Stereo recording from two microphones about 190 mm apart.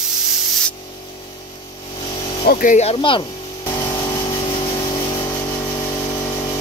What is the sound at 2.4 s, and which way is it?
Speech, 50° left (ahead or behind).